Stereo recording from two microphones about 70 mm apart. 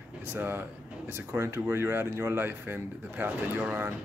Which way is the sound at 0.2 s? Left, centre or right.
Right.